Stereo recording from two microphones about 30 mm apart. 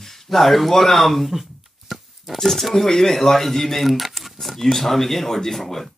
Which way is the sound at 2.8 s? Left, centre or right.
Centre.